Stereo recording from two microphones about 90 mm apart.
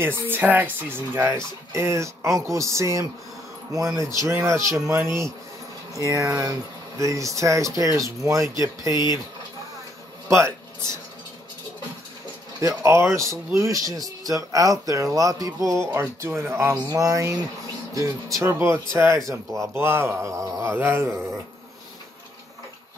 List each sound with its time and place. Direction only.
0.0 s speech: 25° right (ahead or behind)
10.2 s a sound: 30° right (ahead or behind)
12.5 s speech: 35° right (ahead or behind)